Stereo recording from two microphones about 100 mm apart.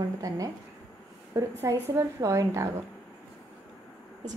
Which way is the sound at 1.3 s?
30° right (ahead or behind).